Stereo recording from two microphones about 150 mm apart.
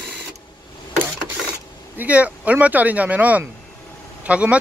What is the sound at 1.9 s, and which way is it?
Speech, 10° right (ahead or behind).